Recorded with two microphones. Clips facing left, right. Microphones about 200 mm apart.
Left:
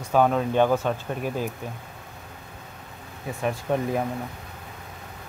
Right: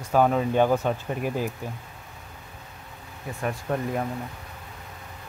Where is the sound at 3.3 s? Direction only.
15° left (ahead or behind).